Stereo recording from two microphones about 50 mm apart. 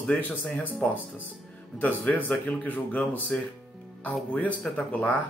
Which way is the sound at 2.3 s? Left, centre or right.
Left.